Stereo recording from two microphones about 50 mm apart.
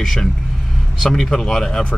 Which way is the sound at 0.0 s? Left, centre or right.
Centre.